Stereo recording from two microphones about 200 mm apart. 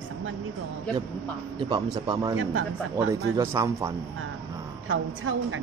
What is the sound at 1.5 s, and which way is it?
Speech, 25° right (ahead or behind).